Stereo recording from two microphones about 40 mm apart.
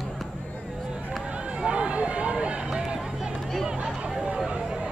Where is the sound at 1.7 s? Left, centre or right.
Right.